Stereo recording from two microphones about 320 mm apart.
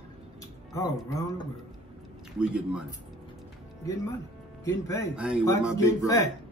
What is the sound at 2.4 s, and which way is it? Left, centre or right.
Speech, centre.